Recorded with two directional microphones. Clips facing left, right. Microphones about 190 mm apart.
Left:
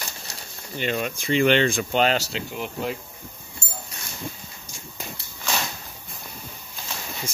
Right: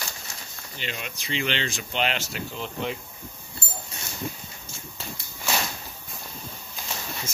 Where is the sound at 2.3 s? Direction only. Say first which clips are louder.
Left 3 dB; 20° left (ahead or behind).